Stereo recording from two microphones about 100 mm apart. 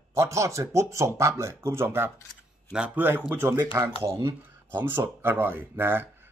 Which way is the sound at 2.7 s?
10° right (ahead or behind).